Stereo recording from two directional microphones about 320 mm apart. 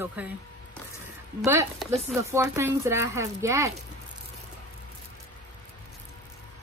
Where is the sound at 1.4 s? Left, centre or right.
Centre.